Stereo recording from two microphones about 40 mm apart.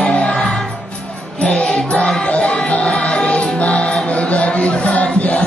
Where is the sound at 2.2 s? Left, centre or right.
Left.